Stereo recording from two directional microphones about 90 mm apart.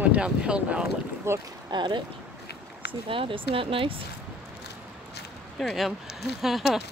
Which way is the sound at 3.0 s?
75° right (ahead or behind).